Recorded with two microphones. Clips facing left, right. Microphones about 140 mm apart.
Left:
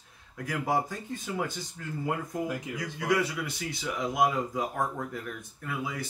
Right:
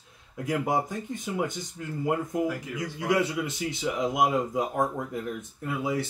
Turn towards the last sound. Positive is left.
turn(degrees=-25)  # may be behind; listen again after turning